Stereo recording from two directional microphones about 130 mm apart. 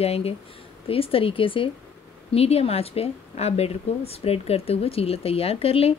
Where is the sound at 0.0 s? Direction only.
50° left (ahead or behind).